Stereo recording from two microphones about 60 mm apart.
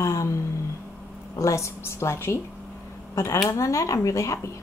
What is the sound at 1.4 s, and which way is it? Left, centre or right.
A woman's voice, left.